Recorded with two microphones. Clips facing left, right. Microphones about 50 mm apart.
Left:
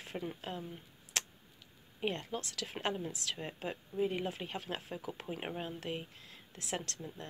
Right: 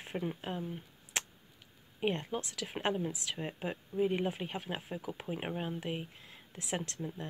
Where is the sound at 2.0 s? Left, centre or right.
Centre.